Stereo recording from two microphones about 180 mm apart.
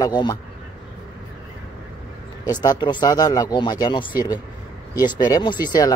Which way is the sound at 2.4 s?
20° left (ahead or behind).